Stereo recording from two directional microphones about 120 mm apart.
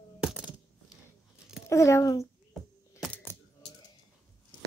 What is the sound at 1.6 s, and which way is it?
Speech, 25° left (ahead or behind).